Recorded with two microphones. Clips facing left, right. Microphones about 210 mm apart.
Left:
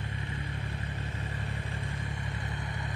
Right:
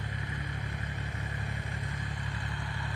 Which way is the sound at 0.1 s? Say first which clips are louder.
Left 1 dB; 30° left (ahead or behind).